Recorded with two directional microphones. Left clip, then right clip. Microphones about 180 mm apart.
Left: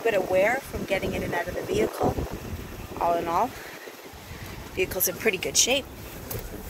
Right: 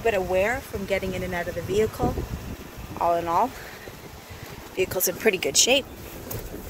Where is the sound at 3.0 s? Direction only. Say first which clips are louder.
Right 2 dB; 5° right (ahead or behind).